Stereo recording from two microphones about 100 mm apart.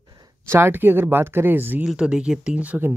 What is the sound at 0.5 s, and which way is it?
Speech, 20° right (ahead or behind).